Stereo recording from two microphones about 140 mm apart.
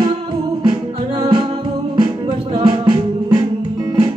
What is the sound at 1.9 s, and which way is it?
Music, 35° right (ahead or behind).